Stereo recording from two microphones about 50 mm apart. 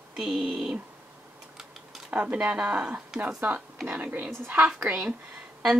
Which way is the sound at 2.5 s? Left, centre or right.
Centre.